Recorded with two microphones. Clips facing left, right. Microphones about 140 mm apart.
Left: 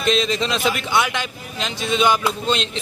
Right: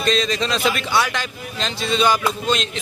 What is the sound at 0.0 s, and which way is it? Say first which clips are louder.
Speech: left 1 dB; 20° left (ahead or behind).